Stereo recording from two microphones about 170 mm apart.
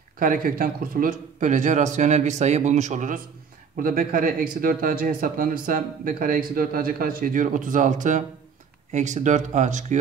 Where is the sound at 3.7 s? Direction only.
55° right (ahead or behind).